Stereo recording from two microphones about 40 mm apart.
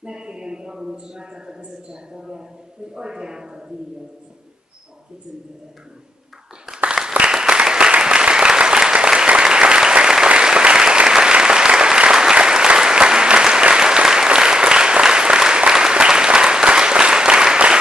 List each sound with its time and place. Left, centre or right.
0.0 s a sound: right
0.7 s a man's voice: centre
7.2 s applause: centre